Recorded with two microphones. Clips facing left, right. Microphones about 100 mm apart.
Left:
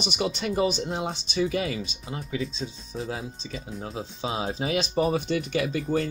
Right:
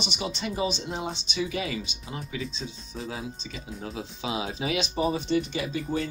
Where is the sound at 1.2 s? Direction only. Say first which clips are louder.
Left 4 dB; 45° left (ahead or behind).